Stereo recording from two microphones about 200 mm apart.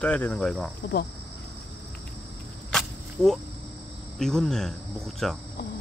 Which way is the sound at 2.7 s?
Centre (ahead or behind).